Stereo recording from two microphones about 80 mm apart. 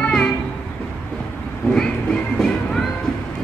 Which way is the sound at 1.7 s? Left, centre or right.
Centre.